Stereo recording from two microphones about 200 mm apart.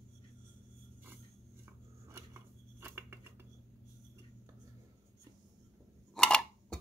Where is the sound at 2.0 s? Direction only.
10° right (ahead or behind).